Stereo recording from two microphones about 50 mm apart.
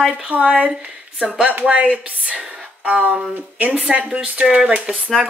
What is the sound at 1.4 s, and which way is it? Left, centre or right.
A woman's voice, right.